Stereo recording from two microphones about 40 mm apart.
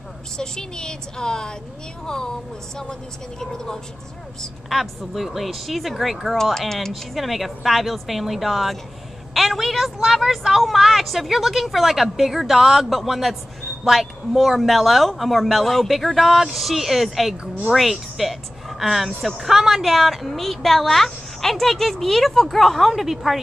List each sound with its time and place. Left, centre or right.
0.4 s a woman's voice: centre
4.6 s a woman's voice: centre